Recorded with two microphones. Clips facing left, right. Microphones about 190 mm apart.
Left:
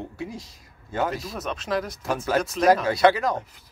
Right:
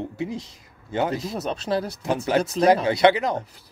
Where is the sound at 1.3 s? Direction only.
35° right (ahead or behind).